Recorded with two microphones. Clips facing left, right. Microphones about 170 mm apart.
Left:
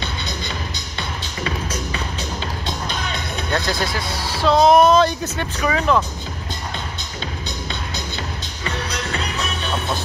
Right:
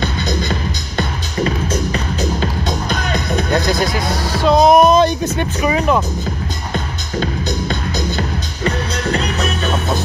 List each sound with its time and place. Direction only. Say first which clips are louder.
0.0 s music: right 9 dB; 45° right (ahead or behind)
2.4 s music: right 7 dB; 45° right (ahead or behind)
4.4 s music: right 3 dB; 15° right (ahead or behind)
8.6 s music: right 7 dB; 40° right (ahead or behind)